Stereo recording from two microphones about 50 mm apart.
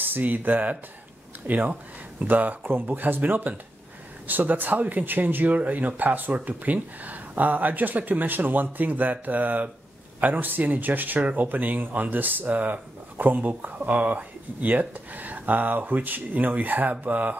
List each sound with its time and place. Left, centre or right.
0.0 s speech: right